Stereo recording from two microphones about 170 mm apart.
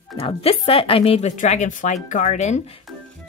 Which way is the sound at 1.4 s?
45° left (ahead or behind).